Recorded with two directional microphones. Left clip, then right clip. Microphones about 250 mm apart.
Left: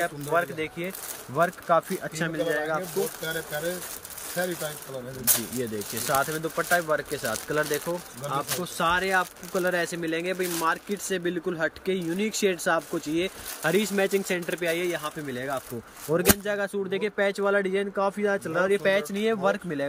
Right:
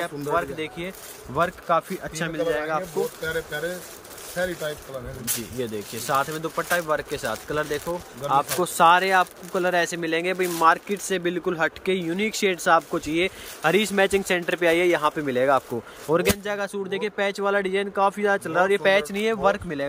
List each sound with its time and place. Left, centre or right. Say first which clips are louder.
0.0 s speech: right 1 dB; centre
5.6 s speech: right 1 dB; centre